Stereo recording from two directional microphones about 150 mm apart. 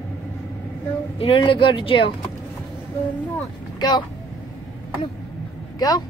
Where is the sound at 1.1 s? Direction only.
40° left (ahead or behind).